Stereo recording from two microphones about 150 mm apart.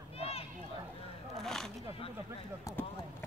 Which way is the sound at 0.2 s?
40° left (ahead or behind).